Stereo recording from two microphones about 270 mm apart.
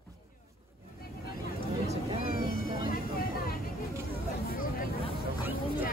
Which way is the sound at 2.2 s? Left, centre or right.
Left.